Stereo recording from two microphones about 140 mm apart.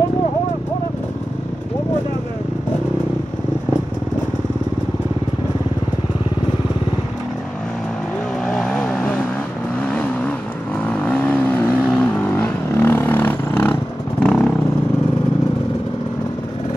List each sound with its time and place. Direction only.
8.5 s vehicle: 5° left (ahead or behind)